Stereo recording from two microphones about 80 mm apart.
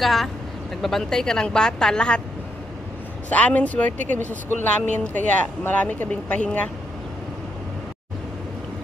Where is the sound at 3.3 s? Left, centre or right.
Centre.